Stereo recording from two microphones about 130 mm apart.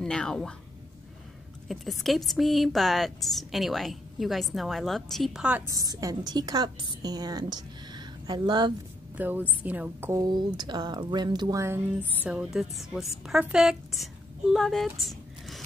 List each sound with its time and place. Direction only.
0.0 s a woman's voice: 5° left (ahead or behind)
1.7 s a woman's voice: centre (ahead or behind)
5.7 s a woman's voice: 25° right (ahead or behind)
9.1 s a woman's voice: 15° right (ahead or behind)
10.2 s a woman's voice: 35° right (ahead or behind)
11.6 s a woman's voice: 20° right (ahead or behind)
12.2 s a woman's voice: 10° right (ahead or behind)